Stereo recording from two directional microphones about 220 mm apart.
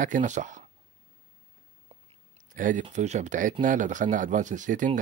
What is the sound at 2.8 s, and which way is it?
Speech, 30° right (ahead or behind).